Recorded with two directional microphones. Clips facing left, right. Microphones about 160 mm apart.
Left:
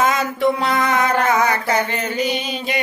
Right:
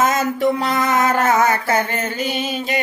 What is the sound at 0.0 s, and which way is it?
Mantra, 45° right (ahead or behind).